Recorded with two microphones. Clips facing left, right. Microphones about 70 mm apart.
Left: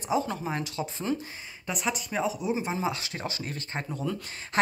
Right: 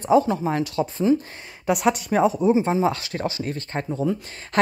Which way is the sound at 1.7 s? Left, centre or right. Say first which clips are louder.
Right 11 dB; right.